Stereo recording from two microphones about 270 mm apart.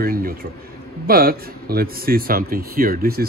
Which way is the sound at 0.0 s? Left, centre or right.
Right.